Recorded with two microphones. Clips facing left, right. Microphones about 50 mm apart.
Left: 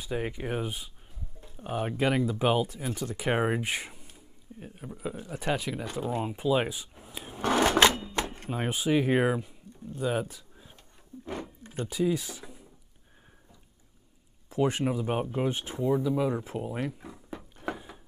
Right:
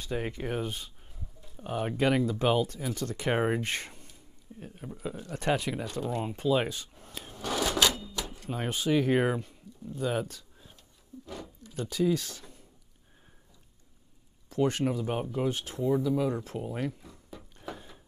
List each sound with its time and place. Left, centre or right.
0.0 s speech: centre
5.9 s speech: centre
7.3 s a sound: left
8.5 s speech: centre
11.2 s a sound: left
11.8 s speech: centre
14.5 s speech: centre
16.0 s speech: centre
16.8 s speech: left
17.7 s a sound: left